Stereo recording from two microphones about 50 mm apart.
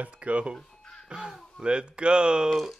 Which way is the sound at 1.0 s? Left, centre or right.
Centre.